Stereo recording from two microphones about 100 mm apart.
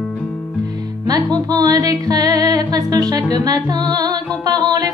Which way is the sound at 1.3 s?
40° right (ahead or behind).